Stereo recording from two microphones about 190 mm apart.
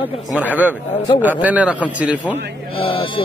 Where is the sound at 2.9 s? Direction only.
25° left (ahead or behind).